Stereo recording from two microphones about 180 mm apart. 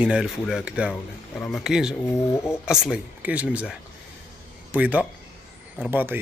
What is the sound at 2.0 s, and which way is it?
Speech, 15° left (ahead or behind).